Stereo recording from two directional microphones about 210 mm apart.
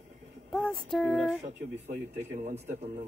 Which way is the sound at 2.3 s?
30° right (ahead or behind).